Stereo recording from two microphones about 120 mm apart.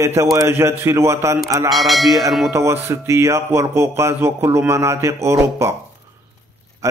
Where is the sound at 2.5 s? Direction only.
20° right (ahead or behind).